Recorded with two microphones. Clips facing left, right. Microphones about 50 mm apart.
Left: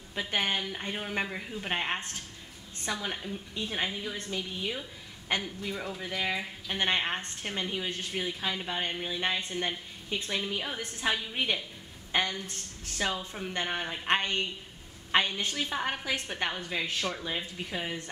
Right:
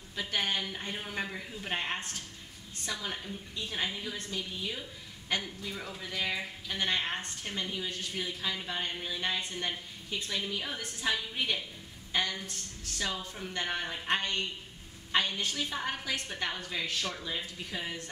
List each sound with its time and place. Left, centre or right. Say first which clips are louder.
0.1 s a woman's voice: left 2 dB; left
5.7 s speech: left 4 dB; centre
6.7 s a woman's voice: left 3 dB; left